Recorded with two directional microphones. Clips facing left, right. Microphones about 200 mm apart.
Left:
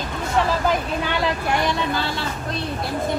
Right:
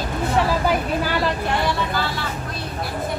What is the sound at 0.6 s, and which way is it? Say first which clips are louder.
Vehicle: right 1 dB; 5° right (ahead or behind).